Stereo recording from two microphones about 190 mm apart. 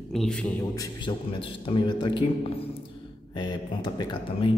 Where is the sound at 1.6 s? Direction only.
25° left (ahead or behind).